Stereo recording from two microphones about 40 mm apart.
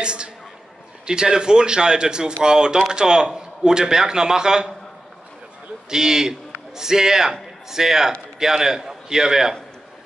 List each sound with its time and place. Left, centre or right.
0.0 s a woman's voice: right
5.9 s a man's voice: centre